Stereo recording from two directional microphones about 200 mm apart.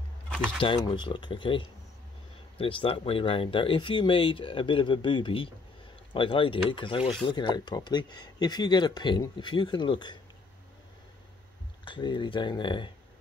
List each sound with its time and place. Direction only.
0.3 s camera: 5° left (ahead or behind)
0.6 s speech: 20° left (ahead or behind)
11.8 s speech: 25° left (ahead or behind)